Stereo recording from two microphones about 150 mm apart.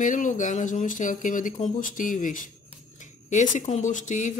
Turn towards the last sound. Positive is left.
turn(degrees=55)  # may be behind; listen again after turning